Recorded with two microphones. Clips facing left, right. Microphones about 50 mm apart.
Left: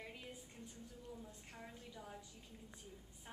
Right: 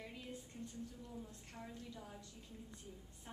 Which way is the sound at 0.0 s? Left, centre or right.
Centre.